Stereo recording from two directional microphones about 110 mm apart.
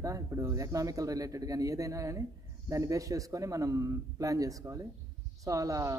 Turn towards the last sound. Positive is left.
turn(degrees=-30)  # may be behind; listen again after turning